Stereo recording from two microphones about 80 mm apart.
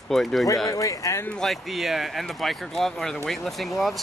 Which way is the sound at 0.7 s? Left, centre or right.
Left.